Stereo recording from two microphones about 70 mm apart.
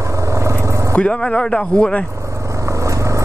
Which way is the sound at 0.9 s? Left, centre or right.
Centre.